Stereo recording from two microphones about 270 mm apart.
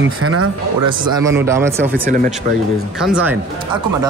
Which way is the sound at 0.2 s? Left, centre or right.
Right.